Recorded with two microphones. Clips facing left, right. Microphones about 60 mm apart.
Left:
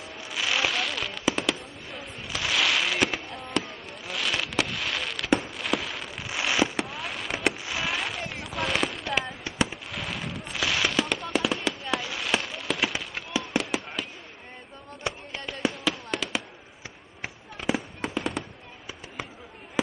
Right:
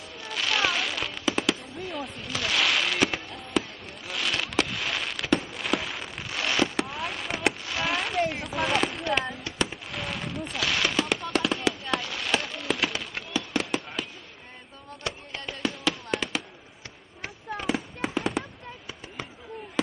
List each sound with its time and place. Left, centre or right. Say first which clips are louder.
0.3 s fireworks: right 1 dB; centre
5.4 s a sound: even; centre
6.2 s fireworks: left 1 dB; centre
8.3 s a sound: right 2 dB; centre
9.7 s fireworks: right 1 dB; centre
15.0 s fireworks: left 2 dB; centre
15.7 s fireworks: right 1 dB; centre
17.6 s fireworks: left 1 dB; centre